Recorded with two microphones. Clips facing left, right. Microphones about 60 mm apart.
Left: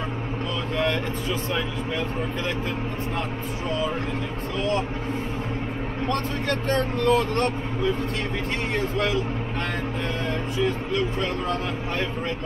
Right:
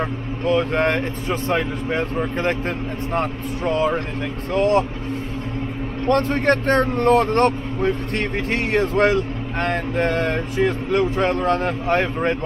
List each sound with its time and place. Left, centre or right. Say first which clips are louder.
0.5 s speech: right 8 dB; right
4.6 s speech: right 8 dB; right
6.0 s speech: right 10 dB; right